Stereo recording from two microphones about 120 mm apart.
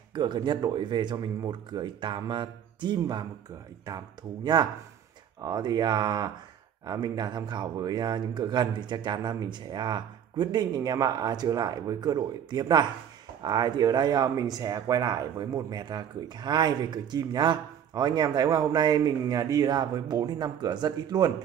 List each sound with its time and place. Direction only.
0.1 s speech: 40° right (ahead or behind)
5.4 s speech: 35° right (ahead or behind)